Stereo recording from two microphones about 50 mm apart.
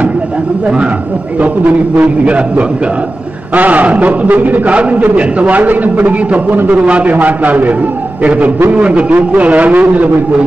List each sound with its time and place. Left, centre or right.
1.4 s a man's voice: right